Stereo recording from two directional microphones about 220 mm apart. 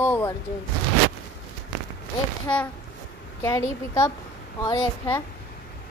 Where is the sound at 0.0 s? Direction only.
10° left (ahead or behind).